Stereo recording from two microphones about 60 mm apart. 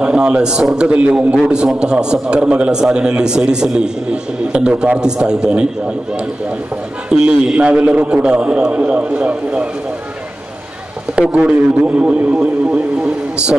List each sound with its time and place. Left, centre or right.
0.0 s a man's voice: centre
7.1 s a man's voice: centre
11.1 s a man's voice: right